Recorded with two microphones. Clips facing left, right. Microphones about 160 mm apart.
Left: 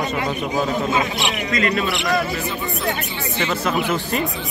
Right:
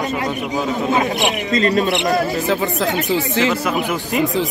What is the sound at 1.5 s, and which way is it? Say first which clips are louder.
Speech: right 4 dB; 35° right (ahead or behind).